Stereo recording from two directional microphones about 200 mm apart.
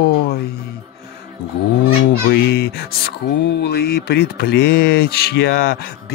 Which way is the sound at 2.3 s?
55° left (ahead or behind).